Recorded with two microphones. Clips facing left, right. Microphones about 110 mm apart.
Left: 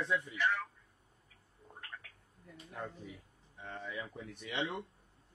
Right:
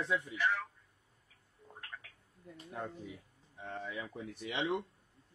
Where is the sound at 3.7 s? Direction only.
10° right (ahead or behind).